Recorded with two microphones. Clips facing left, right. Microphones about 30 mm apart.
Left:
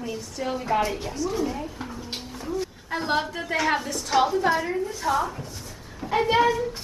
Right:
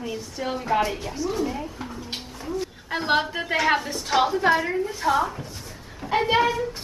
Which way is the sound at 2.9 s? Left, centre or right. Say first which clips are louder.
Right 3 dB; right.